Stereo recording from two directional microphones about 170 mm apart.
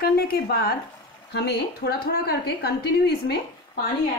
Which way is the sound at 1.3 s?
75° left (ahead or behind).